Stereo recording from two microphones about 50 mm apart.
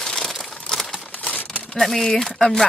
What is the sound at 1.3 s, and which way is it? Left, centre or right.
Crumpling, left.